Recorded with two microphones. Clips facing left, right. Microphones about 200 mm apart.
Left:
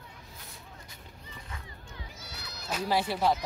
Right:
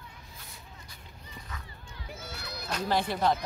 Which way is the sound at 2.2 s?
55° right (ahead or behind).